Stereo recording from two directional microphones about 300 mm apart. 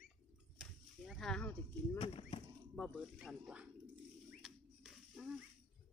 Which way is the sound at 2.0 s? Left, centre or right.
Centre.